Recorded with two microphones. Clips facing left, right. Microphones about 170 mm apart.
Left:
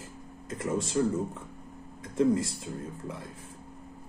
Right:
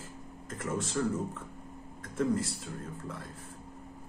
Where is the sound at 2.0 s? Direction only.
15° left (ahead or behind).